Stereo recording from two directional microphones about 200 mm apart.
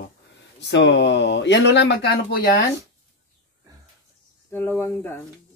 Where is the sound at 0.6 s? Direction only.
60° left (ahead or behind).